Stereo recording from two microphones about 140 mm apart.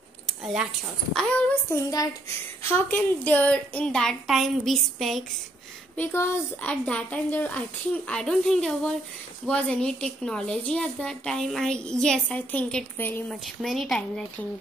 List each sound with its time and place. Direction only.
0.3 s speech: centre (ahead or behind)
1.7 s speech: 25° left (ahead or behind)
2.7 s a woman's voice: 15° left (ahead or behind)
5.9 s a woman's voice: 15° left (ahead or behind)
13.6 s a woman's voice: centre (ahead or behind)